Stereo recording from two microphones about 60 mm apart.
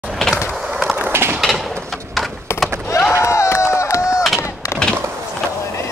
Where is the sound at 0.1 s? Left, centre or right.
Centre.